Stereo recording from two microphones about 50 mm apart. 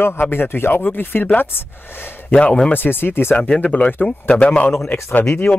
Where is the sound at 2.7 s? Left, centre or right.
Left.